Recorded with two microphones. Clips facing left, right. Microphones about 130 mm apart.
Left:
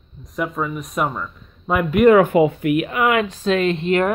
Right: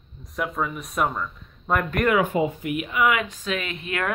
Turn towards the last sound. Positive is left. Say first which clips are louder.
# left 11 dB
turn(degrees=30)  # may be behind; listen again after turning